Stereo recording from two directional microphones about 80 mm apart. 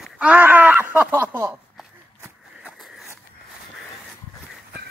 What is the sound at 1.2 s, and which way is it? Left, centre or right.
Speech, right.